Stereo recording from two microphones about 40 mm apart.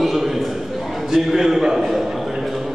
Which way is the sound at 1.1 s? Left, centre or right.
Centre.